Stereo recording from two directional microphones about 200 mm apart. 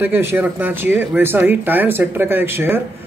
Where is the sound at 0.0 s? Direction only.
10° right (ahead or behind).